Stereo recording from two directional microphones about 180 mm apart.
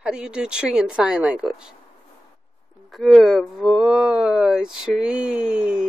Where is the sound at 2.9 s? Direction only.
Centre (ahead or behind).